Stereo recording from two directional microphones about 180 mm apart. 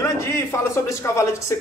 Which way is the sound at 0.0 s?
15° left (ahead or behind).